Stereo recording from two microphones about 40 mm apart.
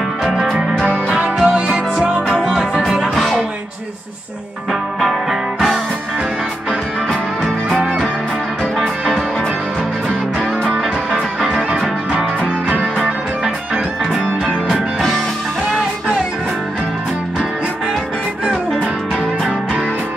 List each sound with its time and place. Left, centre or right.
0.2 s music: centre
0.8 s music: right
1.4 s music: right
3.0 s music: centre
7.7 s music: centre
14.7 s music: centre